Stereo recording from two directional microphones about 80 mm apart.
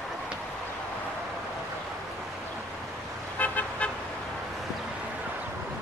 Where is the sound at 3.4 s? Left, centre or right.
Centre.